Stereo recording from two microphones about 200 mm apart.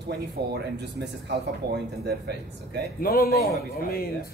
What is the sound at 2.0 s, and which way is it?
Speech, 55° right (ahead or behind).